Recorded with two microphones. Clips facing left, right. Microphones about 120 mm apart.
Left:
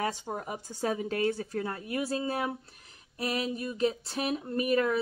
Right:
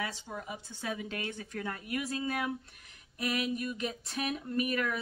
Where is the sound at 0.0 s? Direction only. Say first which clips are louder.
Left 6 dB; 50° left (ahead or behind).